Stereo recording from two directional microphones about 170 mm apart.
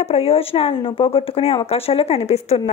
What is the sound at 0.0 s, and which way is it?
Speech, 35° left (ahead or behind).